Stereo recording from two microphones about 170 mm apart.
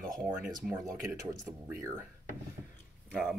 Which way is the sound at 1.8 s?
15° right (ahead or behind).